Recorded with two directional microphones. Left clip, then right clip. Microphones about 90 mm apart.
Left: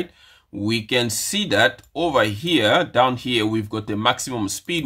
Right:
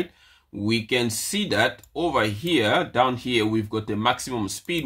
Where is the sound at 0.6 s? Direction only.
50° left (ahead or behind).